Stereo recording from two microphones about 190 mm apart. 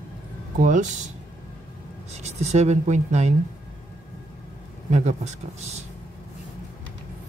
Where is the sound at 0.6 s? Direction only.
40° right (ahead or behind).